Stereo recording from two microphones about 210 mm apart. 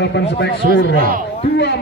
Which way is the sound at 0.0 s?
55° left (ahead or behind).